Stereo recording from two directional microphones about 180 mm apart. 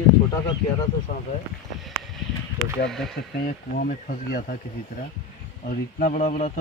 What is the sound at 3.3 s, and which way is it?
Speech, 55° left (ahead or behind).